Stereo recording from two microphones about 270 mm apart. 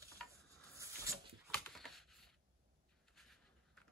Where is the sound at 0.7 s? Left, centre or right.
Centre.